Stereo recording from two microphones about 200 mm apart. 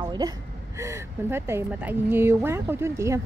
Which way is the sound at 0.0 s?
20° right (ahead or behind).